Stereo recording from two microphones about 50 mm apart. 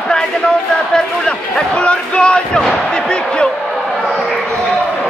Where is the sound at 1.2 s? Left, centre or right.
Left.